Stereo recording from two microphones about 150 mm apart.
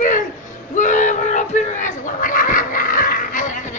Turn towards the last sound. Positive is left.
turn(degrees=60)  # may be behind; listen again after turning